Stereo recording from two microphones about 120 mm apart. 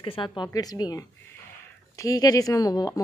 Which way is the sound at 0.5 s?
35° left (ahead or behind).